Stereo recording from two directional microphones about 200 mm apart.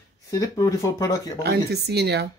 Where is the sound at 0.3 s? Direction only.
15° left (ahead or behind).